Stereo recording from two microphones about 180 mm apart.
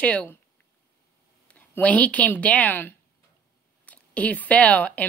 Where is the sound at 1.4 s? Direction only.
5° left (ahead or behind).